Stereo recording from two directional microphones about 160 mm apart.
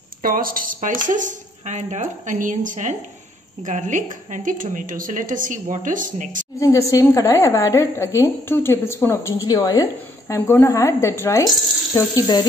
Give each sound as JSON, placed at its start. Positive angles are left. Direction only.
{"t": 0.2, "sound": "a woman's voice", "side_deg": -60}
{"t": 6.6, "sound": "a woman's voice", "side_deg": 20}